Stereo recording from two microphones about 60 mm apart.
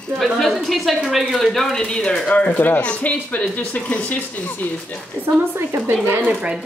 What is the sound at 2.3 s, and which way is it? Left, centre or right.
Speech, left.